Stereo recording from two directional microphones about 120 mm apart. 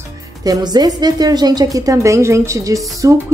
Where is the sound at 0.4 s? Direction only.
35° right (ahead or behind).